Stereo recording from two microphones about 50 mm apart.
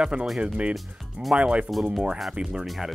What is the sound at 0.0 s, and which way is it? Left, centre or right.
Speech, right.